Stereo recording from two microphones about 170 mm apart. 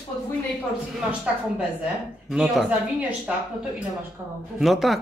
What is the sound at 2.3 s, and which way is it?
Speech, centre (ahead or behind).